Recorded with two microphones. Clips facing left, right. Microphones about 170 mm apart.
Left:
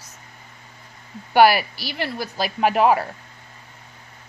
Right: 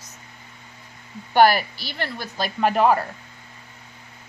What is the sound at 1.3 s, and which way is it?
Speech, 10° left (ahead or behind).